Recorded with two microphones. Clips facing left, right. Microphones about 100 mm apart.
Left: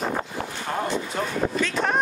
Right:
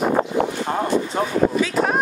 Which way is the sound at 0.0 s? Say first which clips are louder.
Right 9 dB; 60° right (ahead or behind).